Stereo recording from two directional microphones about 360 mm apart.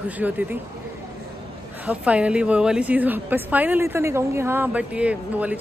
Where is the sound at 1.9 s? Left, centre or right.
Centre.